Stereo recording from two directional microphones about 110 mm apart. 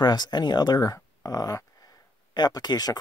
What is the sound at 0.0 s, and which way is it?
Speech, 40° left (ahead or behind).